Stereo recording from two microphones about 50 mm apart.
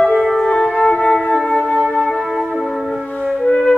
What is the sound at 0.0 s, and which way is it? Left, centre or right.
Music, centre.